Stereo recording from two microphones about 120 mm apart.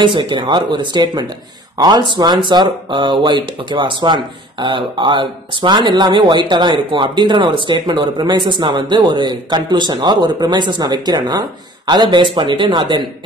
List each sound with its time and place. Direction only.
0.0 s speech: 40° right (ahead or behind)